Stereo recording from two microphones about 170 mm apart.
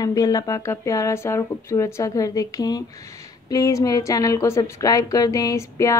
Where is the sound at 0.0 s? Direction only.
20° left (ahead or behind).